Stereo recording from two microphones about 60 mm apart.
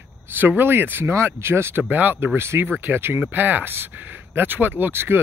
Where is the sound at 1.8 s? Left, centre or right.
Right.